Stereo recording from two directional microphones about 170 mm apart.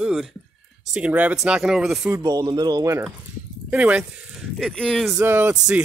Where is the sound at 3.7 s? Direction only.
10° right (ahead or behind).